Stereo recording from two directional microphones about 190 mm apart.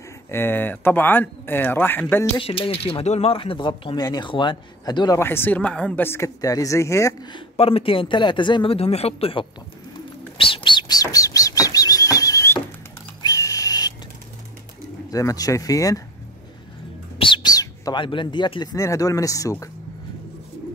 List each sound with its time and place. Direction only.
0.3 s speech: 10° left (ahead or behind)
2.3 s speech: 30° left (ahead or behind)
10.3 s bird: 30° left (ahead or behind)
13.2 s a sound: 20° left (ahead or behind)
15.0 s speech: 20° left (ahead or behind)
17.2 s speech: 25° left (ahead or behind)